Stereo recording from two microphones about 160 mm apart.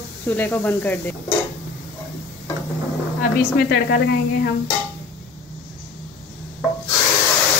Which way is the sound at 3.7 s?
85° left.